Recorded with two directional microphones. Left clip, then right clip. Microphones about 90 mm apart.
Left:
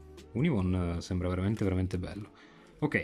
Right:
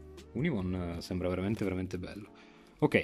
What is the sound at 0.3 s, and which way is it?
Speech, 5° left (ahead or behind).